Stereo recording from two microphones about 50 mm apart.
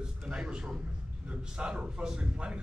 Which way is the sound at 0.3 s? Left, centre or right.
Centre.